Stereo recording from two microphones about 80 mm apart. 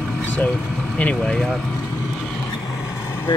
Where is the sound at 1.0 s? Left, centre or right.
Centre.